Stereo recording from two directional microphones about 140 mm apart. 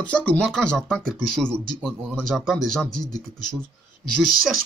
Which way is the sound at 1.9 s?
15° right (ahead or behind).